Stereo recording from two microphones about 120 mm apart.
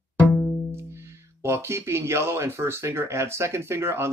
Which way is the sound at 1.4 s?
20° right (ahead or behind).